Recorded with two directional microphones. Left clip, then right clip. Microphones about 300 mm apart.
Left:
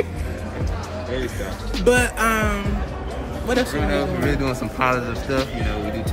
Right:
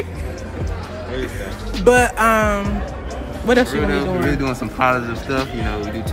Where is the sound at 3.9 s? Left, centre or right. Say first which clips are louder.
Right 2 dB; centre.